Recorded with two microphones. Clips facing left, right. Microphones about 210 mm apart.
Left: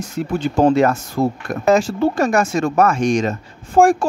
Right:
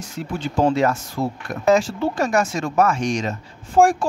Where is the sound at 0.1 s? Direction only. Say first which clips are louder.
Left 5 dB; 55° left (ahead or behind).